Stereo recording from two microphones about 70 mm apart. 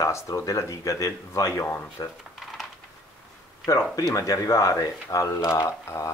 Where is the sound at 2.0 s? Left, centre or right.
Left.